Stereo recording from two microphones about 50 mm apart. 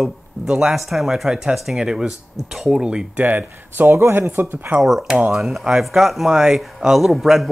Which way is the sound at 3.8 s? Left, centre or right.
Right.